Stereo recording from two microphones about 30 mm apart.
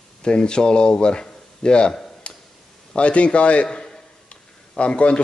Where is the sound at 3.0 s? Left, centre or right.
Left.